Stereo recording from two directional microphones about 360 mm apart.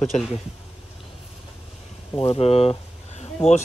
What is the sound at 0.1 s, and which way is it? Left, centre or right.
Speech, centre.